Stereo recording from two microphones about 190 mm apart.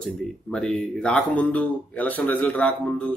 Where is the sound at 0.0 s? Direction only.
5° left (ahead or behind).